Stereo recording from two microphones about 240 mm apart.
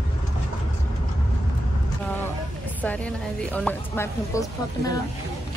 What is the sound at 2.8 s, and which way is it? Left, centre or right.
A woman's voice, centre.